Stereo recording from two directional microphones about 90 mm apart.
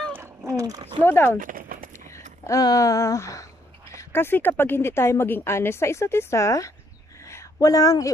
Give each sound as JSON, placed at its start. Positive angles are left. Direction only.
{"t": 0.5, "sound": "a sound", "side_deg": -40}
{"t": 1.0, "sound": "a woman's voice", "side_deg": 25}
{"t": 2.0, "sound": "speech", "side_deg": 35}
{"t": 4.1, "sound": "a woman's voice", "side_deg": 25}